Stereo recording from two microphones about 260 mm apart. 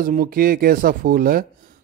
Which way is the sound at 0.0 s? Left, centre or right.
Right.